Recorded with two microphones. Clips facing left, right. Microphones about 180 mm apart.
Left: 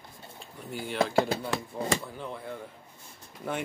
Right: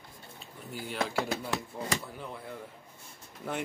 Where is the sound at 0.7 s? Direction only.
Centre (ahead or behind).